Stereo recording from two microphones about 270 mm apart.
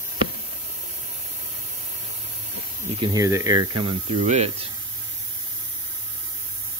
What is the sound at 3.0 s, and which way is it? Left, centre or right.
Speech, centre.